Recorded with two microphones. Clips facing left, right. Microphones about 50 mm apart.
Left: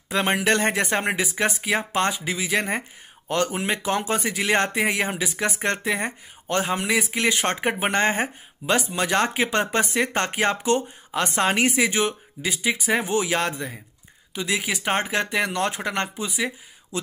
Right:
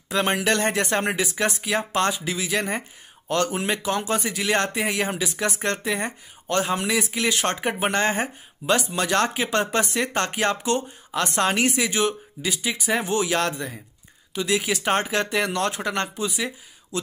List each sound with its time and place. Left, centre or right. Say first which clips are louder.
0.1 s speech: left 1 dB; left
3.8 s speech: even; left